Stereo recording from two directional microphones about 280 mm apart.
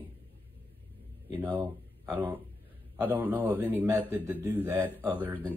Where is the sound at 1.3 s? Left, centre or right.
Centre.